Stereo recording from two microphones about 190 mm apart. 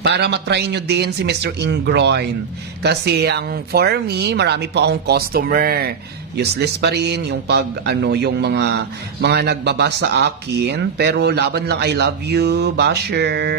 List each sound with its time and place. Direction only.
0.0 s speech: 65° right (ahead or behind)